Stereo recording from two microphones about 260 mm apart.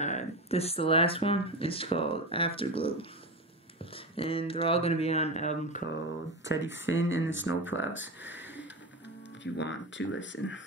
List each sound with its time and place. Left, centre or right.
0.0 s speech: left
6.4 s speech: left
9.4 s speech: left